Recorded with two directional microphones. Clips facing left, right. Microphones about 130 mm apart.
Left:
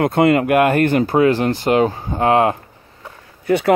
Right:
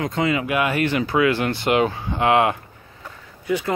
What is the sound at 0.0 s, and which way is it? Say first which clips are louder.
Speech: left 8 dB; 60° left (ahead or behind).